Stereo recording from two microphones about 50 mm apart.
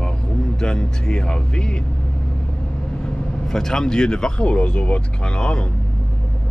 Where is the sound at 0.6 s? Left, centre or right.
Centre.